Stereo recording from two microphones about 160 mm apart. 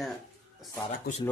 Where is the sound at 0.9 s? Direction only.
55° left (ahead or behind).